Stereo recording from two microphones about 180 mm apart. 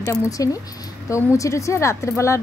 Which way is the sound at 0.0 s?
15° left (ahead or behind).